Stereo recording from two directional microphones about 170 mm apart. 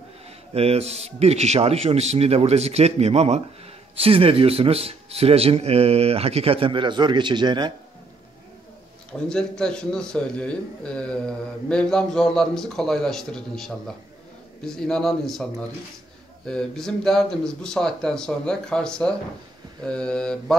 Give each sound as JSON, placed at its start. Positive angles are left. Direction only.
{"t": 0.6, "sound": "a man's voice", "side_deg": -35}
{"t": 9.3, "sound": "speech", "side_deg": 5}
{"t": 16.4, "sound": "speech", "side_deg": 5}